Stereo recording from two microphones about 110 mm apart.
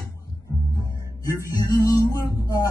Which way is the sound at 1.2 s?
30° left (ahead or behind).